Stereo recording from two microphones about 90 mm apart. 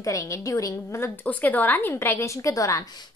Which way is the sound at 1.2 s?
20° left (ahead or behind).